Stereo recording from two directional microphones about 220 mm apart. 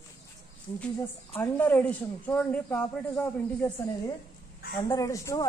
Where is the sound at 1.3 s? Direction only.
10° left (ahead or behind).